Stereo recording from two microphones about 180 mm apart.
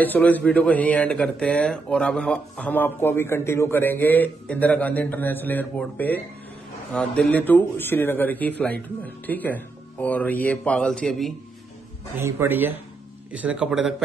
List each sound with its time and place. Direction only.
0.0 s speech: 10° left (ahead or behind)
12.2 s speech: 15° right (ahead or behind)